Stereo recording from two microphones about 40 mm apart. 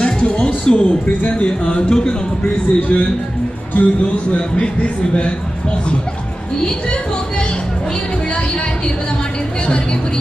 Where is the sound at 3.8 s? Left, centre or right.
Left.